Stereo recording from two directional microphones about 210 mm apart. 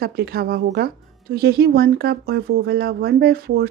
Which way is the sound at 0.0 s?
45° right (ahead or behind).